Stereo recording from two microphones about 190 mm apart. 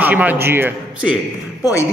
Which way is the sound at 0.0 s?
10° right (ahead or behind).